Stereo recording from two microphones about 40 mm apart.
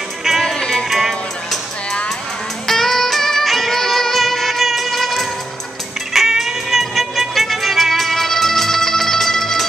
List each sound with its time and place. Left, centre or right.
0.6 s music: centre
0.8 s music: centre
2.6 s music: centre